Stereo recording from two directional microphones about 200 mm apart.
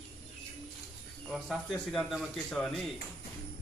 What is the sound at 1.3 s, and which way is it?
A man's voice, centre (ahead or behind).